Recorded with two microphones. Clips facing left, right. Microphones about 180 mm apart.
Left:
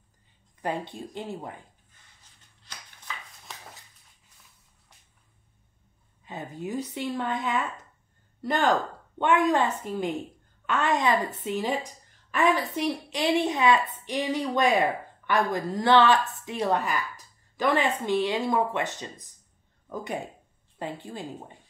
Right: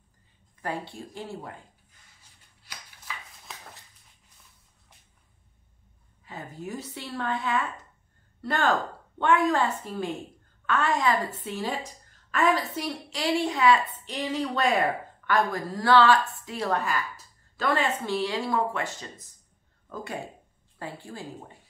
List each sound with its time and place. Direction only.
0.6 s speech: 20° left (ahead or behind)
3.4 s a sound: centre (ahead or behind)
6.2 s a woman's voice: 20° left (ahead or behind)